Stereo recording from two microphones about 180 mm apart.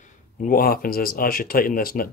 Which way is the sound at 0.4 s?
55° left (ahead or behind).